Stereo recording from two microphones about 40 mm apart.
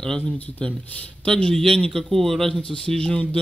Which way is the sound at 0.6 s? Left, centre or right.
Left.